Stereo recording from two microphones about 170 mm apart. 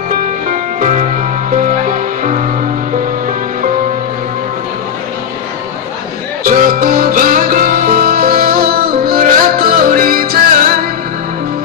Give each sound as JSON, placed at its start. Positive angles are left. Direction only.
{"t": 0.1, "sound": "music", "side_deg": -50}
{"t": 6.4, "sound": "music", "side_deg": -55}